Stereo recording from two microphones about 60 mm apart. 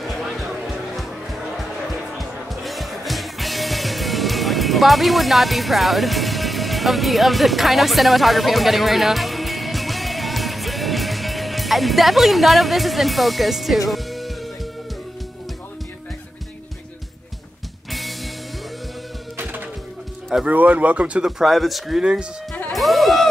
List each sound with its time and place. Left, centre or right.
0.0 s music: centre
2.1 s music: centre
17.9 s music: centre
19.3 s music: right
20.4 s speech: right
21.2 s speech: centre
22.0 s speech: centre
22.7 s music: centre